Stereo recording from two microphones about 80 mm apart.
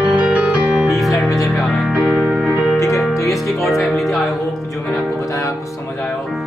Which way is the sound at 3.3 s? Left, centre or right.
Centre.